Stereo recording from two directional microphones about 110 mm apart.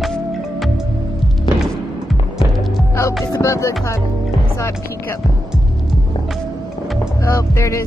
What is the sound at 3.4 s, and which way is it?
Speech, 25° left (ahead or behind).